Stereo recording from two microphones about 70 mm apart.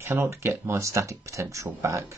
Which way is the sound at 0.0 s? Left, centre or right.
Right.